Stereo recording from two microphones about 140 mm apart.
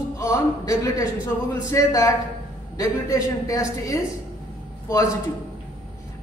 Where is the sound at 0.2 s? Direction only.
20° left (ahead or behind).